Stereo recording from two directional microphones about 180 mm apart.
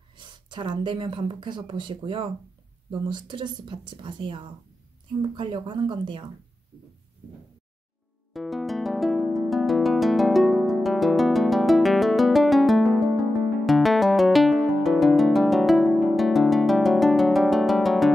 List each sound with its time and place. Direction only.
0.1 s a woman's voice: 25° right (ahead or behind)
8.3 s music: centre (ahead or behind)